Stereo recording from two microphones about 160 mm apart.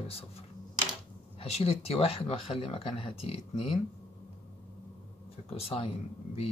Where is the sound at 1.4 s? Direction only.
40° left (ahead or behind).